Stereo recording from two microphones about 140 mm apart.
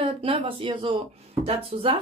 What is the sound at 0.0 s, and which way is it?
Speech, 40° right (ahead or behind).